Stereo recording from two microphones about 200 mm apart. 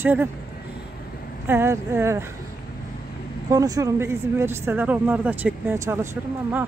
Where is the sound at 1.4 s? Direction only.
10° right (ahead or behind).